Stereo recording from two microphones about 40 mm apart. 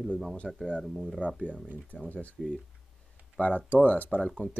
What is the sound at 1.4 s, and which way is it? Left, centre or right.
Speech, left.